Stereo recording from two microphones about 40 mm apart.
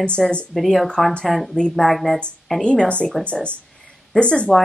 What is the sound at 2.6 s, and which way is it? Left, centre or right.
Speech, left.